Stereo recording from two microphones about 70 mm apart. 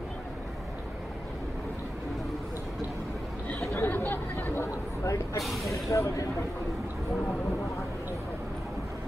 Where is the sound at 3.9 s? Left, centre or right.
Left.